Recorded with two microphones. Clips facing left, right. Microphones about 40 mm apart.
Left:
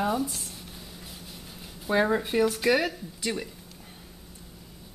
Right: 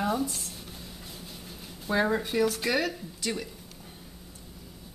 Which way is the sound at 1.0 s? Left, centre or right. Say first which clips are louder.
Even; centre.